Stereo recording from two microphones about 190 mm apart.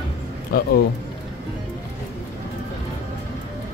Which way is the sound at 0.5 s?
50° left (ahead or behind).